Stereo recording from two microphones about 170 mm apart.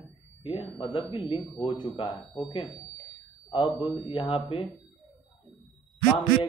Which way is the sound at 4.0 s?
35° left (ahead or behind).